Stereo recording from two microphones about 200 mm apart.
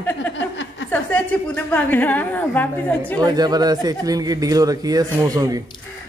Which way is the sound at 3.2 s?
20° right (ahead or behind).